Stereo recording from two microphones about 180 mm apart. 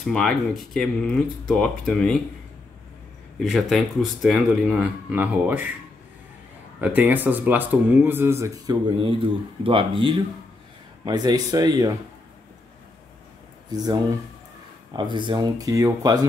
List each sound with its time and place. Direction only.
0.0 s speech: centre (ahead or behind)
3.3 s speech: centre (ahead or behind)
6.8 s speech: 10° right (ahead or behind)
13.7 s speech: 20° right (ahead or behind)